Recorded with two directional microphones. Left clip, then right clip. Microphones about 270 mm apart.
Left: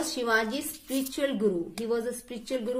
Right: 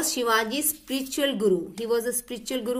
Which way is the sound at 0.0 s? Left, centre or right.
Right.